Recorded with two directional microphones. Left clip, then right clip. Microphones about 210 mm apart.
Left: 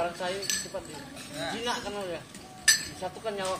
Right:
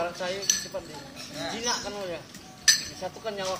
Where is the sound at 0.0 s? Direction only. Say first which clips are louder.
Even; 15° right (ahead or behind).